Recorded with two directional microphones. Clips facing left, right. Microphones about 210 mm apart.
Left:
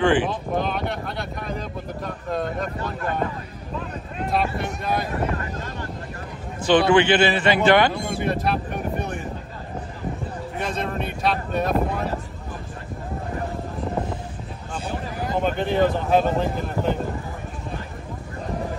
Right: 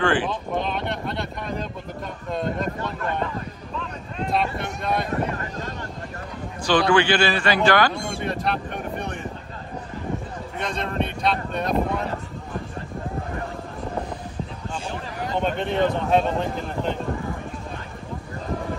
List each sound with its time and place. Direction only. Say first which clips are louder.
0.0 s speech: left 3 dB; 15° left (ahead or behind)
0.3 s speech: left 1 dB; centre (ahead or behind)
4.3 s a sound: left 1 dB; centre (ahead or behind)
6.9 s a man's voice: left 2 dB; 20° left (ahead or behind)
7.9 s boat: left 3 dB; centre (ahead or behind)
10.6 s speech: right 1 dB; 5° left (ahead or behind)
15.2 s speech: left 1 dB; 5° left (ahead or behind)